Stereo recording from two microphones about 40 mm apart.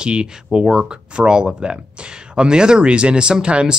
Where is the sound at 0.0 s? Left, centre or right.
Right.